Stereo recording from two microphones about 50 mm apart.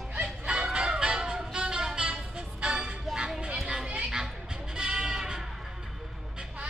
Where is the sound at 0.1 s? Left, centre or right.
Right.